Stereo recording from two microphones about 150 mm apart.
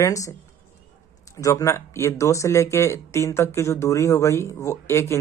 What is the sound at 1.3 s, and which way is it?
Speech, 20° left (ahead or behind).